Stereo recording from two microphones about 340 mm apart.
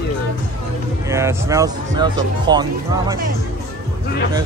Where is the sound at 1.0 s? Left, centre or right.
Centre.